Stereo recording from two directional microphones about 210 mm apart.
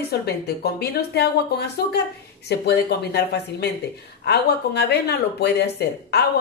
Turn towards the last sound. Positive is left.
turn(degrees=50)  # may be behind; listen again after turning